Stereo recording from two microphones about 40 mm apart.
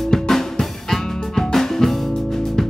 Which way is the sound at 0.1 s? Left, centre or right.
Centre.